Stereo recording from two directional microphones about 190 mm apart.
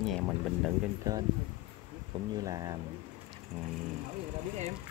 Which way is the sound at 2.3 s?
20° right (ahead or behind).